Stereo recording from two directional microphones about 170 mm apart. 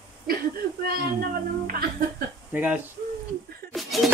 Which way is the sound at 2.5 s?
10° right (ahead or behind).